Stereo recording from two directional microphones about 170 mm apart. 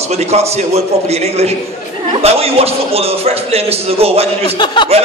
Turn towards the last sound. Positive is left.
turn(degrees=-35)  # may be behind; listen again after turning